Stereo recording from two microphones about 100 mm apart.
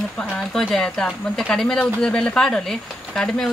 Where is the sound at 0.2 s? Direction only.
5° left (ahead or behind).